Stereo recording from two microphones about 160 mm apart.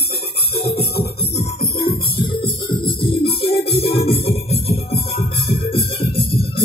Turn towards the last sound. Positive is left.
turn(degrees=35)  # may be behind; listen again after turning